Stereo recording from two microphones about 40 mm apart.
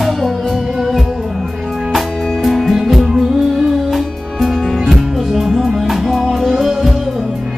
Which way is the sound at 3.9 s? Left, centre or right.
Centre.